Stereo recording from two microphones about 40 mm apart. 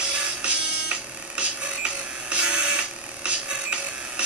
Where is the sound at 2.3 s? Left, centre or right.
Right.